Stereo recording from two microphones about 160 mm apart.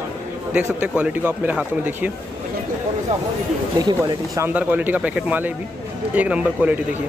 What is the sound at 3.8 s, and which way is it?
Speech, 20° right (ahead or behind).